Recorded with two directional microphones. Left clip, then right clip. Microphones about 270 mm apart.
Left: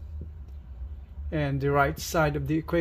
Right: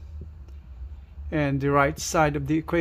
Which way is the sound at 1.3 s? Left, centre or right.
Centre.